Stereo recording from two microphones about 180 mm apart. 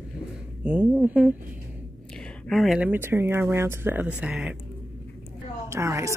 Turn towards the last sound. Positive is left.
turn(degrees=-15)  # may be behind; listen again after turning